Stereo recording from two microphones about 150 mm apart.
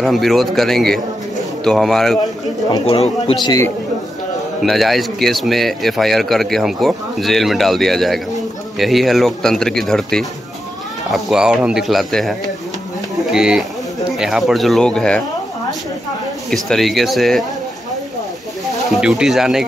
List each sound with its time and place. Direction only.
0.0 s a man's voice: centre (ahead or behind)
2.9 s speech: 40° left (ahead or behind)
4.6 s a man's voice: centre (ahead or behind)
16.4 s a man's voice: centre (ahead or behind)
18.9 s a man's voice: 5° right (ahead or behind)